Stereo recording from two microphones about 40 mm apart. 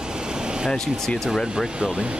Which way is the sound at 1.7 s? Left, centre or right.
Right.